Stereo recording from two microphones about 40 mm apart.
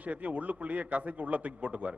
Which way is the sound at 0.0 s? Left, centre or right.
Right.